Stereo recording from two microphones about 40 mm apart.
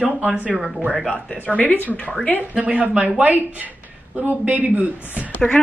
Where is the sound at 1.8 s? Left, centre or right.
Left.